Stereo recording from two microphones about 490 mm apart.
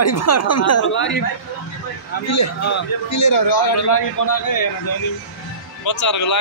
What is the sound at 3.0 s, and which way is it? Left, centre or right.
A man's voice, left.